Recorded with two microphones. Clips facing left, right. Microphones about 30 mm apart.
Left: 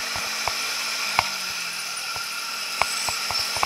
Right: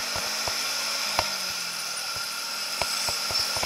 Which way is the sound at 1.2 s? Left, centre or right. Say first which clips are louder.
Left 5 dB; left.